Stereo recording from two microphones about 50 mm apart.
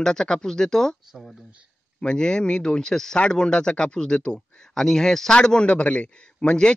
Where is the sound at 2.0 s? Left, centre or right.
Centre.